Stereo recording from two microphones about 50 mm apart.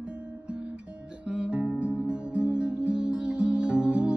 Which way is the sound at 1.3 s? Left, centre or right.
Right.